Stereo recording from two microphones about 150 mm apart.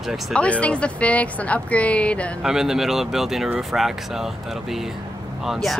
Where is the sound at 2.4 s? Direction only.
5° right (ahead or behind).